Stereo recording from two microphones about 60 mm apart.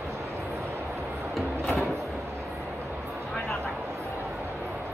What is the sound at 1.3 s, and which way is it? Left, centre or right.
Music, centre.